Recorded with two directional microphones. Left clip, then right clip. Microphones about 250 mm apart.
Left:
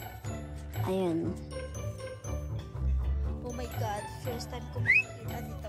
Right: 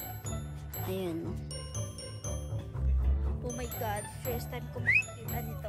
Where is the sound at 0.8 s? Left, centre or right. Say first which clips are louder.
Left 5 dB; centre.